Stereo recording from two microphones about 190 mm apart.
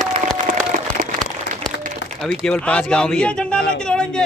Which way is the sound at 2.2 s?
5° left (ahead or behind).